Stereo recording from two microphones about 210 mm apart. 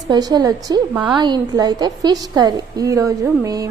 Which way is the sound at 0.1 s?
20° right (ahead or behind).